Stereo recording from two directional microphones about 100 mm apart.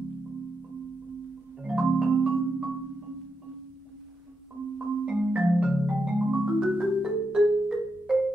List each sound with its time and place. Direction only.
1.6 s marimba: 10° right (ahead or behind)
4.7 s marimba: 5° right (ahead or behind)